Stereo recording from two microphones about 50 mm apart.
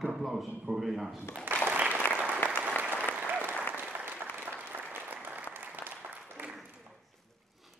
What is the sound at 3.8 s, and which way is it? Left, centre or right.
Applause, right.